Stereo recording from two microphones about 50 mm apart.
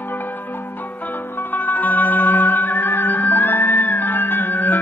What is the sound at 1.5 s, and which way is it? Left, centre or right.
Music, left.